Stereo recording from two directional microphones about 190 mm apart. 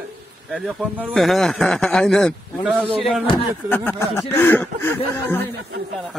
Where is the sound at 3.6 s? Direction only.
10° left (ahead or behind).